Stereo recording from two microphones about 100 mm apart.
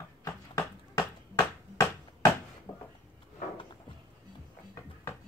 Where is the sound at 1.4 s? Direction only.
35° left (ahead or behind).